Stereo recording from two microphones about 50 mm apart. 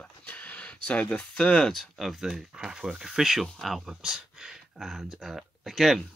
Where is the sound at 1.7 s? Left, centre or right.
Centre.